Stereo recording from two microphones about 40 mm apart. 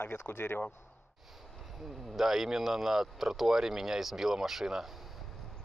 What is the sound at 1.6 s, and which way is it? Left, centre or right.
Speech, centre.